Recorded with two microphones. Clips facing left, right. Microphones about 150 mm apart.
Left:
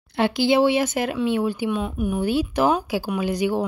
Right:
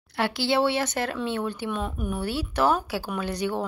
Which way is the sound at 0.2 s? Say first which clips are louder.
Left 5 dB; 15° left (ahead or behind).